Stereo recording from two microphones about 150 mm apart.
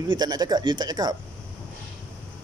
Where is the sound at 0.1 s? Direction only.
25° right (ahead or behind).